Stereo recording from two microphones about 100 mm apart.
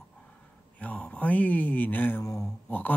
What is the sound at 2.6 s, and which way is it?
Mantra, 20° left (ahead or behind).